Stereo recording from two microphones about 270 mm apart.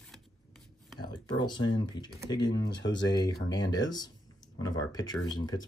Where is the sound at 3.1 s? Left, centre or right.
Centre.